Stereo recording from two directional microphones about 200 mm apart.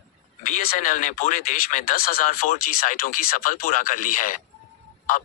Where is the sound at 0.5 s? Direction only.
40° left (ahead or behind).